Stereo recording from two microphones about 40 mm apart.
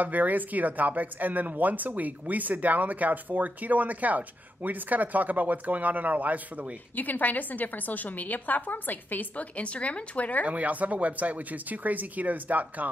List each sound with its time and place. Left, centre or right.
0.0 s speech: right
7.0 s a woman's voice: left
9.6 s speech: left
10.4 s speech: right